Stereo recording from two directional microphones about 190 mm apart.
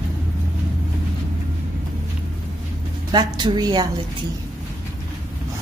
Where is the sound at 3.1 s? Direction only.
25° right (ahead or behind).